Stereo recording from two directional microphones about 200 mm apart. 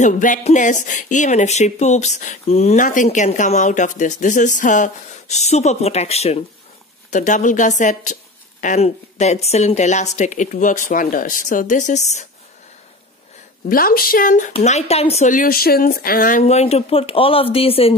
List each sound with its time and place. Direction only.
0.0 s speech: 40° left (ahead or behind)
13.7 s speech: 45° left (ahead or behind); by 17.9 s 30° left (ahead or behind)